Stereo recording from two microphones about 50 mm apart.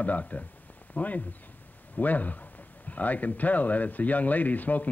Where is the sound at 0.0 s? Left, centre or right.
Left.